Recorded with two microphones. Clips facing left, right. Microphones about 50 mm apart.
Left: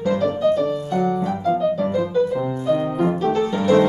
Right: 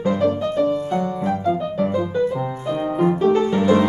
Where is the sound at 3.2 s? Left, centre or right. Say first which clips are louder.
Right 3 dB; right.